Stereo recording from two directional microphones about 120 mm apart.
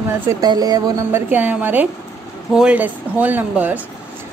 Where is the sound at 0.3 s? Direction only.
35° right (ahead or behind).